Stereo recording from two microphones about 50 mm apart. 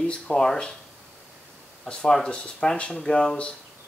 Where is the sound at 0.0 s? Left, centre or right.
Centre.